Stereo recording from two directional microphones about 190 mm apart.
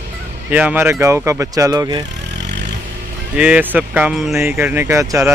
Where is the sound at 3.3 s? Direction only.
5° right (ahead or behind).